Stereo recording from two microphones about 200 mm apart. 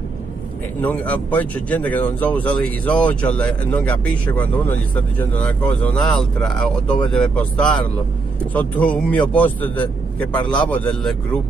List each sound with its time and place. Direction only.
0.8 s speech: 5° left (ahead or behind)
10.3 s a man's voice: 20° left (ahead or behind)
10.7 s speech: 5° left (ahead or behind)